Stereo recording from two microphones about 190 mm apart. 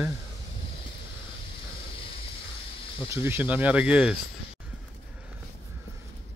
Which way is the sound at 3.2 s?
10° right (ahead or behind).